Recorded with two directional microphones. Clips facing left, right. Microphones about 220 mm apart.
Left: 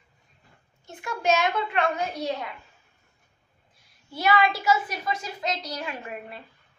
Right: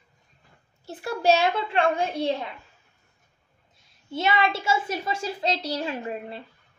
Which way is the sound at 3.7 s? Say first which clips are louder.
Right 6 dB; 25° right (ahead or behind).